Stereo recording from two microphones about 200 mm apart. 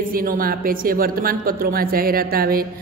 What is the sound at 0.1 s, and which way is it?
A woman's voice, 45° right (ahead or behind).